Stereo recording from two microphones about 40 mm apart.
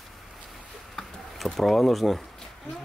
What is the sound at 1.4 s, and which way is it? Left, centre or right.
Speech, centre.